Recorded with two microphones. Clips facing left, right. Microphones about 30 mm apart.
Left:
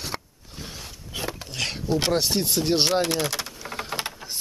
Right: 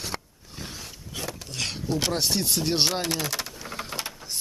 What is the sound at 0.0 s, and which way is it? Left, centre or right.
Zipper, centre.